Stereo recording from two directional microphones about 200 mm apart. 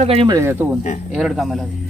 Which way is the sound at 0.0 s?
30° right (ahead or behind).